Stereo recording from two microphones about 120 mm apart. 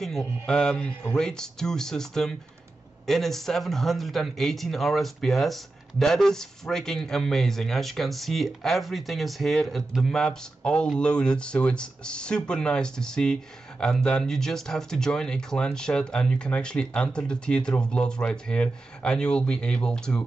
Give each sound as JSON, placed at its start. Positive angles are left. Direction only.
{"t": 0.5, "sound": "a man's voice", "side_deg": 5}